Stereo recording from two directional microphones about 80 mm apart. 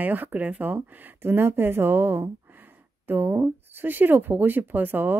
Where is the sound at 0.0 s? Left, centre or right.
Right.